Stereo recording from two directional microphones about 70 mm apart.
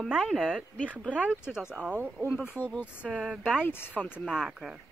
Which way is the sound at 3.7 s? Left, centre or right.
Left.